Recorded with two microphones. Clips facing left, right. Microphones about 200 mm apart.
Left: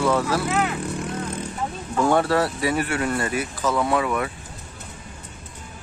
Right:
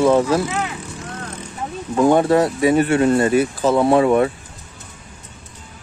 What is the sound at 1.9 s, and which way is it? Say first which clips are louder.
Speech: right 6 dB; 20° right (ahead or behind).